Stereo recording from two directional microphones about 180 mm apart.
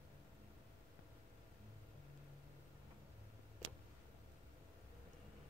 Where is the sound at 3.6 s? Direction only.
90° right.